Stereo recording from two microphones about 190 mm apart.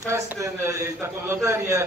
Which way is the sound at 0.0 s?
15° right (ahead or behind).